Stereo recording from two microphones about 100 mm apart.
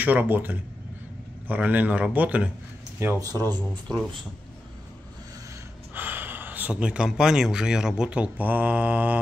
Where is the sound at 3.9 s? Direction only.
45° right (ahead or behind).